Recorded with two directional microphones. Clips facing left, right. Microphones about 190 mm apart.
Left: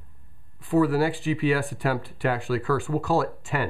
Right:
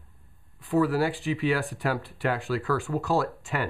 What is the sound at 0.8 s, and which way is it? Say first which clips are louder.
Speech: left 3 dB; 5° left (ahead or behind).